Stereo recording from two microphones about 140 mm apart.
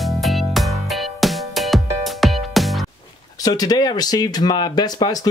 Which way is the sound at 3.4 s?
25° left (ahead or behind).